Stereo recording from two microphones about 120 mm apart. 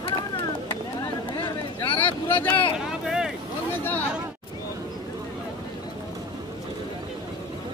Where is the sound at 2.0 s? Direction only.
15° left (ahead or behind).